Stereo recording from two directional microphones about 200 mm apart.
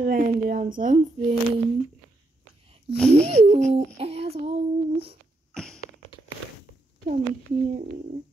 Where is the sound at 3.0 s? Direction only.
5° left (ahead or behind).